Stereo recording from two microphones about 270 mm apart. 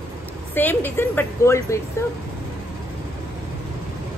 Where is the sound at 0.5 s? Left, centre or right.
Centre.